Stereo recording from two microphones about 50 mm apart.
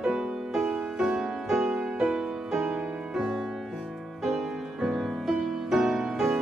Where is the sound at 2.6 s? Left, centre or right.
Centre.